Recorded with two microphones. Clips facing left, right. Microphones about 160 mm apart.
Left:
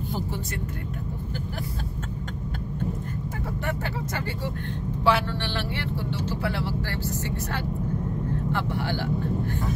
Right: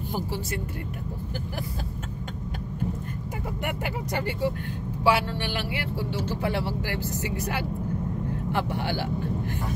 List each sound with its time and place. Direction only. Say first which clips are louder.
3.6 s speech: even; 15° right (ahead or behind)